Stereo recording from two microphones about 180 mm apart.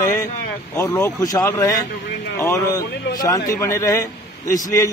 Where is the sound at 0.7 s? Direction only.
15° left (ahead or behind).